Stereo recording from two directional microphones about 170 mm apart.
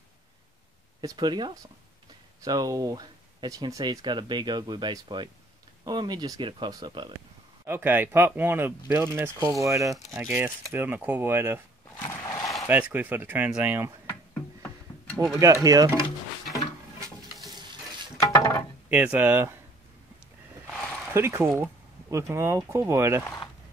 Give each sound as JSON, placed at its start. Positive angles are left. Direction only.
{"t": 1.0, "sound": "speech", "side_deg": -25}
{"t": 7.6, "sound": "speech", "side_deg": -15}
{"t": 12.1, "sound": "a sound", "side_deg": 20}
{"t": 12.6, "sound": "speech", "side_deg": -10}
{"t": 14.0, "sound": "music", "side_deg": 15}
{"t": 15.3, "sound": "speech", "side_deg": -20}
{"t": 17.5, "sound": "water", "side_deg": -25}
{"t": 18.2, "sound": "a sound", "side_deg": 20}
{"t": 18.9, "sound": "speech", "side_deg": -10}
{"t": 20.7, "sound": "a sound", "side_deg": 5}
{"t": 21.1, "sound": "speech", "side_deg": -15}